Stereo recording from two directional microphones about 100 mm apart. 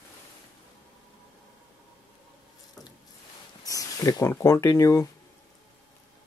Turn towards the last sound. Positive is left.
turn(degrees=30)  # may be behind; listen again after turning